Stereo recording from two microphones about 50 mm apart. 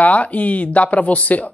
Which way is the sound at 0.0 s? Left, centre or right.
Left.